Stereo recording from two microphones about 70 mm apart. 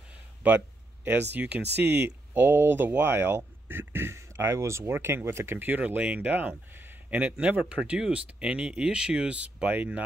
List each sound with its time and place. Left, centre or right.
1.0 s speech: right